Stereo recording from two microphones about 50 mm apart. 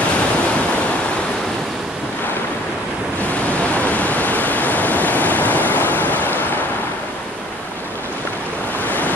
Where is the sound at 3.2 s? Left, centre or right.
Left.